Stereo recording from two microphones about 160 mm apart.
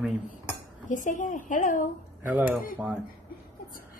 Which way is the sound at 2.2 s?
10° right (ahead or behind).